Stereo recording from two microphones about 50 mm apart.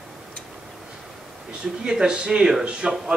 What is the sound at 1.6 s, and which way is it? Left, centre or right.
Speech, centre.